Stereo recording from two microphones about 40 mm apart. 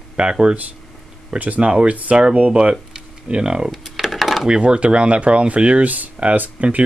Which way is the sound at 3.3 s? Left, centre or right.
Right.